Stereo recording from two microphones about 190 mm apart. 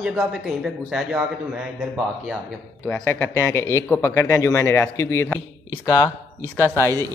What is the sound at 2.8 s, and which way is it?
A man's voice, 10° left (ahead or behind).